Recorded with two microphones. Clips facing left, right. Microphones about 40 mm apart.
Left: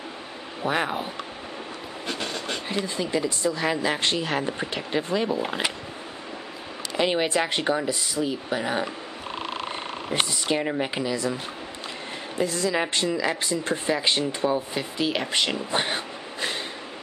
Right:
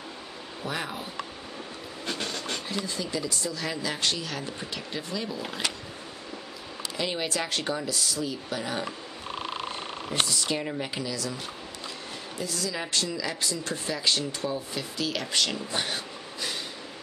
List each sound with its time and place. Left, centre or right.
0.7 s speech: left
2.0 s speech: centre
7.0 s speech: left
10.0 s speech: left
12.4 s speech: left